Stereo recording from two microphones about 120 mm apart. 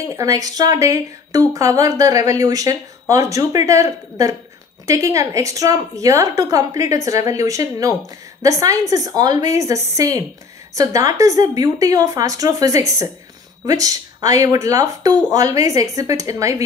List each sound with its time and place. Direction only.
0.1 s speech: 30° right (ahead or behind)